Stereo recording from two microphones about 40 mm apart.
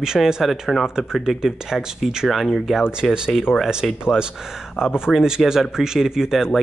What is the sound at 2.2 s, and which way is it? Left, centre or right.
Speech, centre.